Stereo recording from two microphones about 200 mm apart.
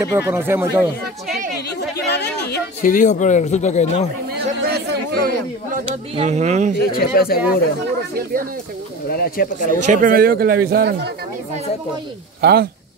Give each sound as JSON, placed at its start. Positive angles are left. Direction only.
{"t": 0.0, "sound": "speech", "side_deg": -15}
{"t": 2.0, "sound": "a sound", "side_deg": 55}
{"t": 4.4, "sound": "chatter", "side_deg": -55}
{"t": 5.9, "sound": "speech", "side_deg": -30}
{"t": 6.9, "sound": "speech", "side_deg": 50}
{"t": 9.1, "sound": "speech", "side_deg": 50}
{"t": 9.8, "sound": "speech", "side_deg": -45}
{"t": 12.4, "sound": "speech", "side_deg": -55}